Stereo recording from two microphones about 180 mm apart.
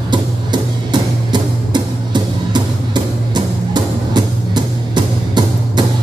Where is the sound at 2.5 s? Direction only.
25° right (ahead or behind).